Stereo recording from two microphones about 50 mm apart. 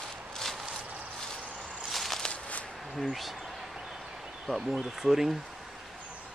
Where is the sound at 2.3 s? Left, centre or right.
Left.